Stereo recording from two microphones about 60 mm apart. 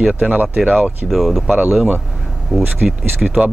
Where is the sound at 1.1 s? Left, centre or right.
Centre.